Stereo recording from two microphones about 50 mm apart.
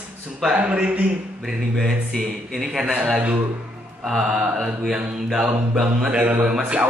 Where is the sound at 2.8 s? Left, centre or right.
Right.